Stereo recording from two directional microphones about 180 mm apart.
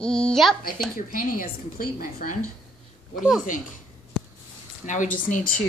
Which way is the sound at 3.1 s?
Centre (ahead or behind).